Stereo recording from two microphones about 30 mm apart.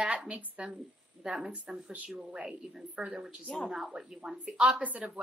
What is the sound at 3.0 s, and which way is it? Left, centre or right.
Speech, centre.